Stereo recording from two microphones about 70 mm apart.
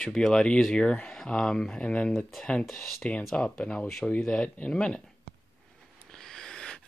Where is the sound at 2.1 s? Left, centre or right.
Centre.